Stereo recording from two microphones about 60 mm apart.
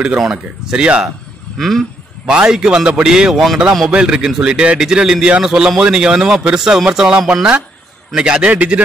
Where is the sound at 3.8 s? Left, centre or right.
Centre.